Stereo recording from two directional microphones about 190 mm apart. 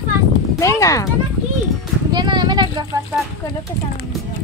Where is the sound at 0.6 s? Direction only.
15° left (ahead or behind).